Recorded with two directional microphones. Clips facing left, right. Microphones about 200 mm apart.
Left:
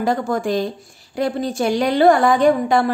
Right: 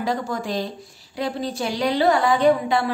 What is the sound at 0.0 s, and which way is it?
A woman's voice, 50° left (ahead or behind).